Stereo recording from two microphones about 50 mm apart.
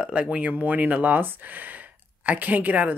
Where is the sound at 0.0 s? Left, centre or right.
Right.